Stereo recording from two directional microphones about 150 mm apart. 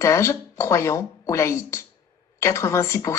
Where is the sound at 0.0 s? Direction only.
20° left (ahead or behind).